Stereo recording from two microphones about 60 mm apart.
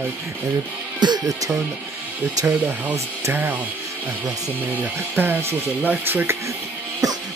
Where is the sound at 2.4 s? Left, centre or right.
Right.